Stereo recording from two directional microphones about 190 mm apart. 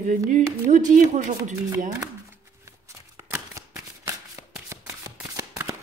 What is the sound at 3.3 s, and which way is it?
Shuffling cards, 15° right (ahead or behind).